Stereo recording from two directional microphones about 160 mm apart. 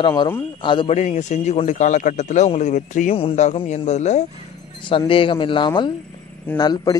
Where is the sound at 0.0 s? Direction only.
30° left (ahead or behind).